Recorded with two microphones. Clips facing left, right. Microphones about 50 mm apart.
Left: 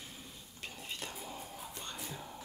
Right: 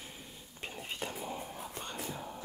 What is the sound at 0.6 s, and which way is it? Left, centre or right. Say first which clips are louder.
Whispering: right 4 dB; right.